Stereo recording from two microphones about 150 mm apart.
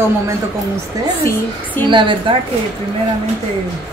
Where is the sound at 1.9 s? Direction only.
35° right (ahead or behind).